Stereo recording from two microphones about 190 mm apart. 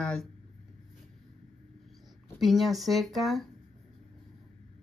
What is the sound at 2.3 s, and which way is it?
Speech, centre (ahead or behind).